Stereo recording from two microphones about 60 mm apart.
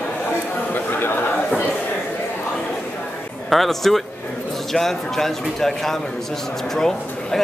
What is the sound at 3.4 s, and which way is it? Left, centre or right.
A man's voice, centre.